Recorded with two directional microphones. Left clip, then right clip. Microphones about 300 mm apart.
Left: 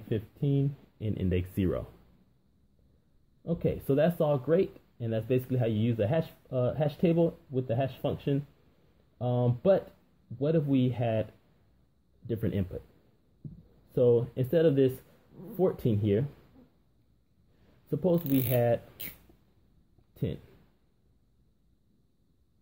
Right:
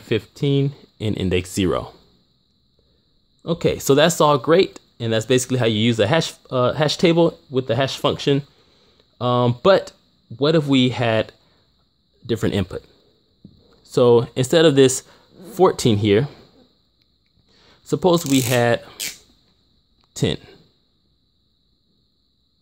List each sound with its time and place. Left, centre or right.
0.9 s speech: right
3.4 s speech: right
12.3 s speech: right
14.1 s speech: right
17.8 s speech: right